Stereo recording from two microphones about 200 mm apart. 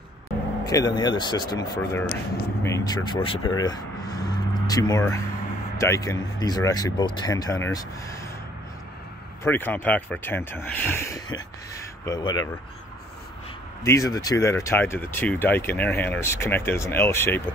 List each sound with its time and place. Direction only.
0.7 s speech: 20° left (ahead or behind)
9.4 s speech: 10° left (ahead or behind)
13.8 s speech: 15° left (ahead or behind)